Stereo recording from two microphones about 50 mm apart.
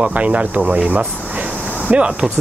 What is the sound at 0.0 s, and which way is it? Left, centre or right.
Speech, right.